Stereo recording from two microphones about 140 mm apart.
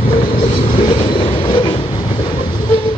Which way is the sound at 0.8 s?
40° left (ahead or behind).